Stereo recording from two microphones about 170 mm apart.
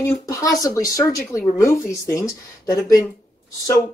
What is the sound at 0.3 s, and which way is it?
Speech, 20° left (ahead or behind).